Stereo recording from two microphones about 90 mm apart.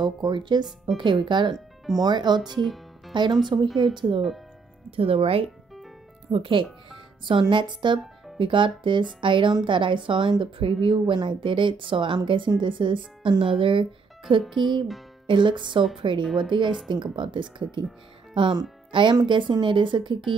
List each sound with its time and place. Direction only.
0.0 s speech: 60° right (ahead or behind)
3.6 s a woman's voice: centre (ahead or behind)
4.9 s speech: 90° right
6.3 s a woman's voice: 75° right (ahead or behind)
7.2 s a woman's voice: 65° right (ahead or behind)